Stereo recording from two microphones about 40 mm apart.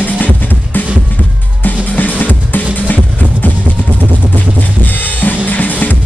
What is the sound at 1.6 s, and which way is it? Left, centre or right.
Music, left.